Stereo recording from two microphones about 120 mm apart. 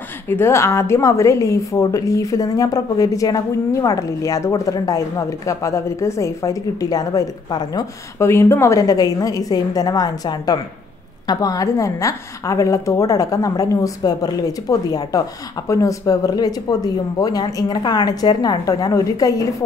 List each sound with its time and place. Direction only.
0.3 s a woman's voice: 20° left (ahead or behind)